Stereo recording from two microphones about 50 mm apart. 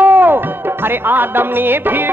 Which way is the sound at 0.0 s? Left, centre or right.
Right.